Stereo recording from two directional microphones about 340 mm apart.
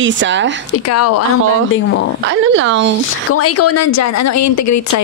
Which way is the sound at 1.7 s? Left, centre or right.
Left.